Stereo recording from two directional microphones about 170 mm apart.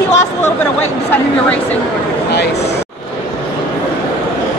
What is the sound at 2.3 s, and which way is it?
Speech, 80° left.